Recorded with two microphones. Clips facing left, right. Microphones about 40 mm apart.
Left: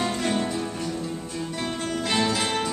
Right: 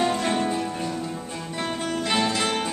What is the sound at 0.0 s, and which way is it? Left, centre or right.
Music, centre.